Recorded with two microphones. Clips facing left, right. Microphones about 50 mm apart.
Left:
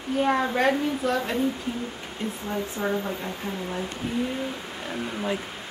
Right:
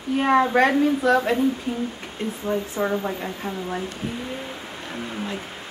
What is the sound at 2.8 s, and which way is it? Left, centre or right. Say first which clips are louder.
Speech: right 3 dB; right.